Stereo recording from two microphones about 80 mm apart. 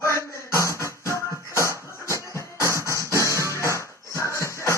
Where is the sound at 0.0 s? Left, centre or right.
Left.